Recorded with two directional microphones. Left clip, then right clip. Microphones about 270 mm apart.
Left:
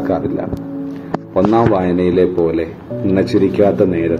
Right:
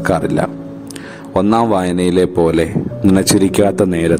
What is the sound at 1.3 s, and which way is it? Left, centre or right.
A man's voice, right.